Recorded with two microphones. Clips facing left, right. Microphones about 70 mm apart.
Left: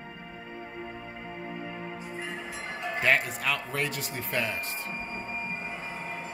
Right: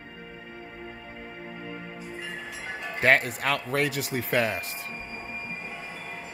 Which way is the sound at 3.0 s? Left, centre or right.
Right.